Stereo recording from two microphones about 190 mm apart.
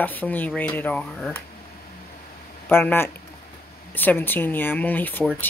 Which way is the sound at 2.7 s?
10° left (ahead or behind).